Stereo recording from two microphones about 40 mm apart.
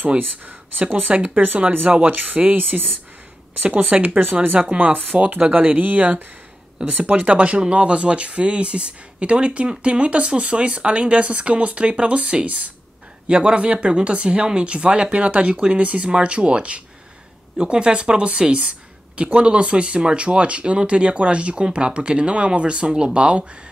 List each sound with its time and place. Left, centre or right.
0.2 s speech: right
3.6 s speech: right
5.5 s speech: right
6.8 s speech: right